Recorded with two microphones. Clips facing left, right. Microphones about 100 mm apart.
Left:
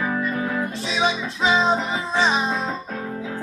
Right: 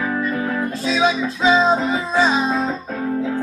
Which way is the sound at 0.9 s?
20° left (ahead or behind).